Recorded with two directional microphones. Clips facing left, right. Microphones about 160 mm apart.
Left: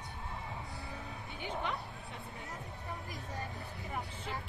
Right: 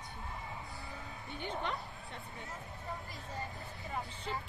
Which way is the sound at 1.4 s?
5° left (ahead or behind).